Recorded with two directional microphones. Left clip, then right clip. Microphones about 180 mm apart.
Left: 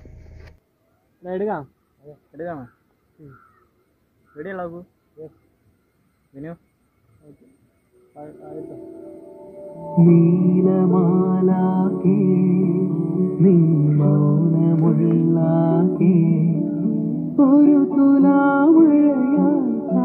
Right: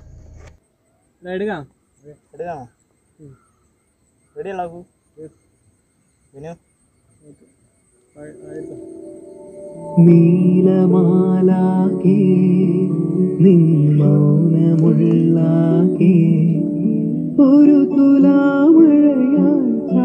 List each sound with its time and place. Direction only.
1.2 s speech: 45° right (ahead or behind)
2.3 s speech: 90° right
4.4 s speech: 90° right
10.0 s music: 5° right (ahead or behind)
10.3 s mantra: 20° right (ahead or behind)
12.2 s music: 15° right (ahead or behind)
17.5 s music: 20° right (ahead or behind)